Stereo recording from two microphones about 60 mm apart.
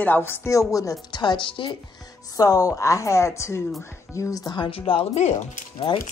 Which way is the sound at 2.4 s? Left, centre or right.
Left.